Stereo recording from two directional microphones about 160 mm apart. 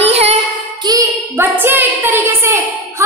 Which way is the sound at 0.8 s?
20° right (ahead or behind).